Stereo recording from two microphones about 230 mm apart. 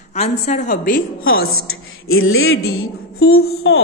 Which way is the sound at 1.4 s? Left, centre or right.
Left.